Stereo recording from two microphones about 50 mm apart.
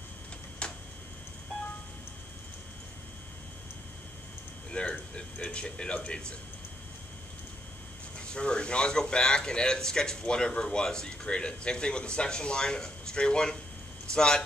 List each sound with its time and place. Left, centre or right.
0.6 s a sound: left
4.6 s speech: left
8.2 s speech: centre